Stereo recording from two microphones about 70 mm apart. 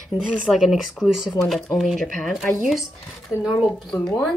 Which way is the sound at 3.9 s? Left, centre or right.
Centre.